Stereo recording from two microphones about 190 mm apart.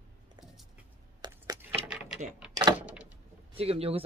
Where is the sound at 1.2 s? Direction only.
20° right (ahead or behind).